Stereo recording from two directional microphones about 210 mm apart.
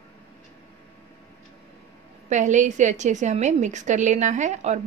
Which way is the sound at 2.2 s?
35° right (ahead or behind).